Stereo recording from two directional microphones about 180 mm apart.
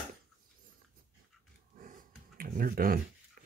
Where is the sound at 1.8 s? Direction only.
50° right (ahead or behind).